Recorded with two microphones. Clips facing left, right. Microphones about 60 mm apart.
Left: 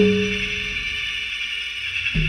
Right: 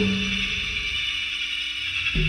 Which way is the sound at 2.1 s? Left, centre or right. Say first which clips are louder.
Left 2 dB; left.